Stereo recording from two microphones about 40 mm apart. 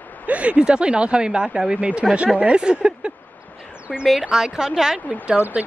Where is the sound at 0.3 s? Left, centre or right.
Right.